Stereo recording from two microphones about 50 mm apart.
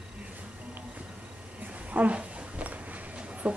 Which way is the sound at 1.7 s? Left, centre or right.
Right.